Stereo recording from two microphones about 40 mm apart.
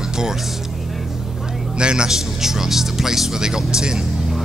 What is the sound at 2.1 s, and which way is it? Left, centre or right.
Speech, centre.